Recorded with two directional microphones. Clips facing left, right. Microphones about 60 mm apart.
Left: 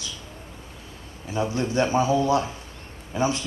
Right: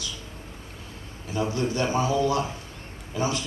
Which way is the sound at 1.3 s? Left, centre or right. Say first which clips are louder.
Left 2 dB; left.